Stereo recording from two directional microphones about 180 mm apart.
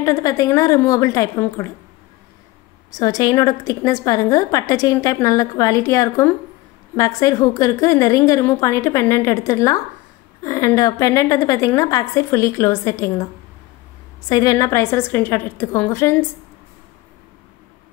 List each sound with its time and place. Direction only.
0.0 s a woman's voice: 20° left (ahead or behind)
2.9 s a woman's voice: 20° left (ahead or behind)
14.3 s a woman's voice: 20° left (ahead or behind)